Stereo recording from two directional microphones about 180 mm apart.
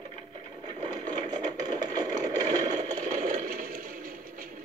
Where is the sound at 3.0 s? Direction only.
40° right (ahead or behind).